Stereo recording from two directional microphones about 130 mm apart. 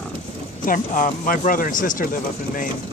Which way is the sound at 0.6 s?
90° left.